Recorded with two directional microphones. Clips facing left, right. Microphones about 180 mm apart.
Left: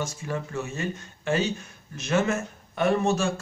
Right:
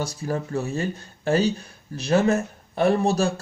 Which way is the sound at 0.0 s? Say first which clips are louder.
Right 4 dB; 35° right (ahead or behind).